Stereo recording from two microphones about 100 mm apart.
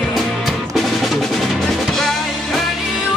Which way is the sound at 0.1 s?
Centre (ahead or behind).